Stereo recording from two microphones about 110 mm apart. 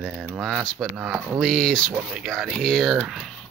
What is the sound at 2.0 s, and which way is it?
Speech, 5° right (ahead or behind).